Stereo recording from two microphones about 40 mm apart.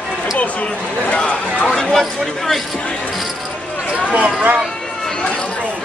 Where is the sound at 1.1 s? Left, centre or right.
Left.